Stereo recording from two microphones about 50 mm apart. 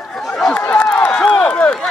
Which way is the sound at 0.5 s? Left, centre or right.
Left.